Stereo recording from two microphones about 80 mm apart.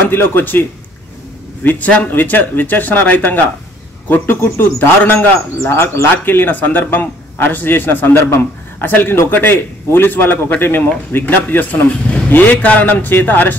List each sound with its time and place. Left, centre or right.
0.1 s speech: left